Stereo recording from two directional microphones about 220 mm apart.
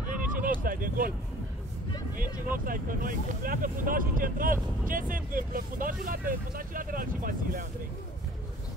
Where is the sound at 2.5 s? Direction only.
40° right (ahead or behind).